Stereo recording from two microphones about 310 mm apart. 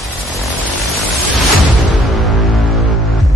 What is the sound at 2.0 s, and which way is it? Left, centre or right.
Music, centre.